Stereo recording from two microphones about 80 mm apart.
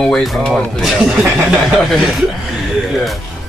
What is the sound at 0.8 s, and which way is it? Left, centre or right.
Speech, centre.